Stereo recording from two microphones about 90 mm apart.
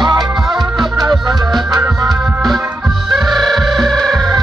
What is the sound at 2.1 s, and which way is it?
Organ, centre (ahead or behind).